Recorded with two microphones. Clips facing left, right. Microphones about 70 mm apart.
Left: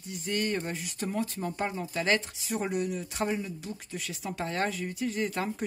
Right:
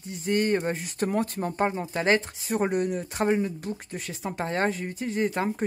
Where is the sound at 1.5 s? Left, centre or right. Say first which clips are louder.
Right 6 dB; right.